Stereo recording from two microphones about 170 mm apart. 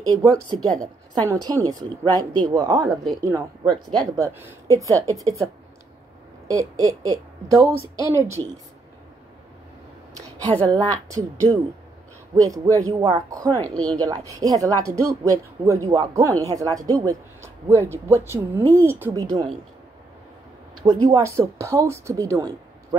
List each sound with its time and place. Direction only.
0.2 s speech: 20° right (ahead or behind)
10.4 s a woman's voice: 10° left (ahead or behind)
10.7 s speech: 20° right (ahead or behind)
12.4 s speech: 20° right (ahead or behind)
20.8 s speech: 30° right (ahead or behind)
21.2 s speech: 15° right (ahead or behind)